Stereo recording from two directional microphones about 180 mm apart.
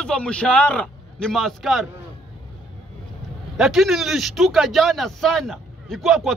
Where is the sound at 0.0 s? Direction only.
5° left (ahead or behind).